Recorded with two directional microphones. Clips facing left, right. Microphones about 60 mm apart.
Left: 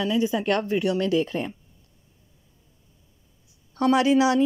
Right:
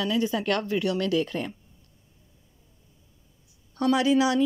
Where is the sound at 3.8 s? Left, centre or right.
Left.